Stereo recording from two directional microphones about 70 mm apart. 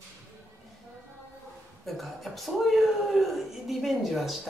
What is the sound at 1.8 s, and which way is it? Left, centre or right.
Speech, centre.